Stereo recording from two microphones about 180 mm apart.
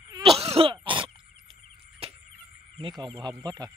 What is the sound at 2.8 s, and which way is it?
Speech, 25° right (ahead or behind).